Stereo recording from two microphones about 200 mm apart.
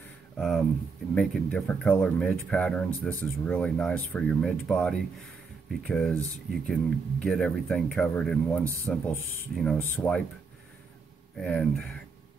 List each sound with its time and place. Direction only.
0.4 s a sound: centre (ahead or behind)
1.1 s speech: 5° left (ahead or behind)
11.3 s speech: 5° left (ahead or behind)